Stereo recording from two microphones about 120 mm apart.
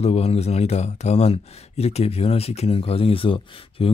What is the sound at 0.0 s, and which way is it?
Speech, 55° left (ahead or behind).